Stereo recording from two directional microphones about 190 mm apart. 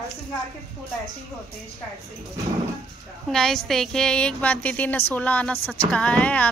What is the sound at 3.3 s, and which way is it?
A woman's voice, centre (ahead or behind).